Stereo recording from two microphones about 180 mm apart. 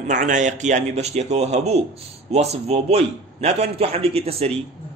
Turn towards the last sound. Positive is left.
turn(degrees=-35)  # may be behind; listen again after turning